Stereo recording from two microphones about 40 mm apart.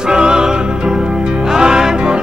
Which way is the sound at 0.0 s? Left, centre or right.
Centre.